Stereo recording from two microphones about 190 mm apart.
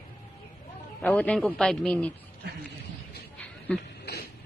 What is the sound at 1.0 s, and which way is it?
A man's voice, 5° left (ahead or behind).